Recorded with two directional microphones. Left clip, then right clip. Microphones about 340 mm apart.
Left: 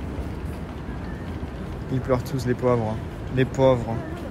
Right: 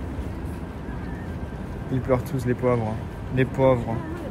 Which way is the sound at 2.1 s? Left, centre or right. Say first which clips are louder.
Even; centre.